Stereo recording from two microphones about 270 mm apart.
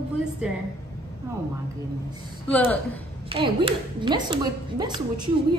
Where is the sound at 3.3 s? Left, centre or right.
Centre.